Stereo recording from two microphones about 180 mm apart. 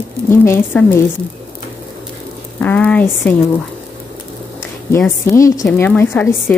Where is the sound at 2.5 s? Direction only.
10° left (ahead or behind).